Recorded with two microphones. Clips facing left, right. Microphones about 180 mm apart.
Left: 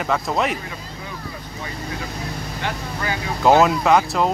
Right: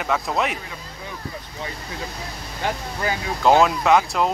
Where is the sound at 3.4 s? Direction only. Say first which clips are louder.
Left 2 dB; 5° left (ahead or behind).